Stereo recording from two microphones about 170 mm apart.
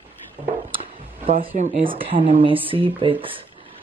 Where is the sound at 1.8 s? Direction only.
30° right (ahead or behind).